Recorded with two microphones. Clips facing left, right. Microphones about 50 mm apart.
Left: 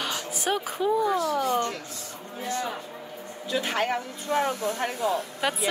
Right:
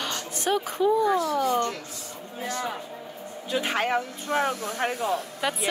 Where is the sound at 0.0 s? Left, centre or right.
Centre.